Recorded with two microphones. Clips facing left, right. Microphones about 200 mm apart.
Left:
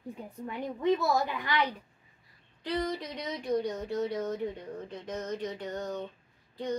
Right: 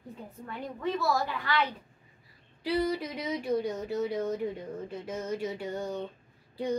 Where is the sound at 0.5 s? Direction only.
20° left (ahead or behind).